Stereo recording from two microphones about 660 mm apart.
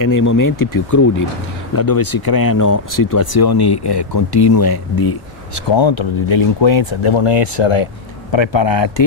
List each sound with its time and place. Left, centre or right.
0.0 s speech: left
5.7 s speech: left